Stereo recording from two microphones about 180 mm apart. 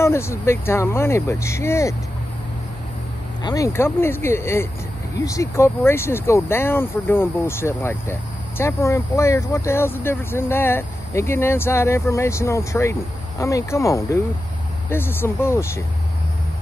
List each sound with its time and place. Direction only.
0.0 s speech: 15° left (ahead or behind)
3.4 s speech: 15° left (ahead or behind)